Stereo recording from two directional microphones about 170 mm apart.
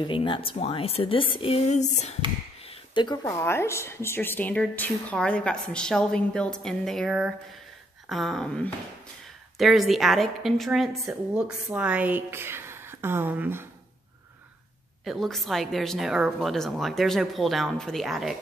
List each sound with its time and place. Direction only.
0.0 s a woman's voice: 30° left (ahead or behind)
2.7 s a woman's voice: 25° left (ahead or behind); by 13.7 s 10° right (ahead or behind)
15.0 s a woman's voice: centre (ahead or behind)